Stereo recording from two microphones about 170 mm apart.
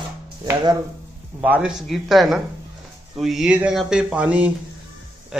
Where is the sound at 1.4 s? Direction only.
5° right (ahead or behind).